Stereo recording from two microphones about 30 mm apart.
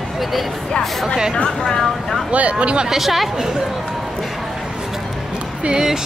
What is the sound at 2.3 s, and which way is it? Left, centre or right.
Speech, right.